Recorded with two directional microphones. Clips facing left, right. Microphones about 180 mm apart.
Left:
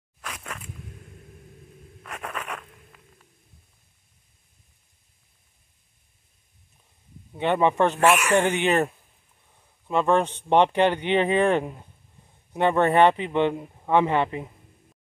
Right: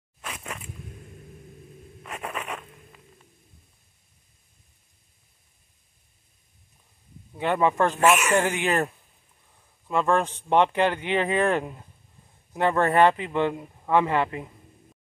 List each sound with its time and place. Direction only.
0.2 s a sound: 5° right (ahead or behind)
2.0 s zipper: 5° right (ahead or behind)
7.3 s speech: 20° left (ahead or behind)
9.8 s speech: 20° left (ahead or behind)
11.6 s speech: 10° left (ahead or behind)
12.5 s speech: 20° left (ahead or behind)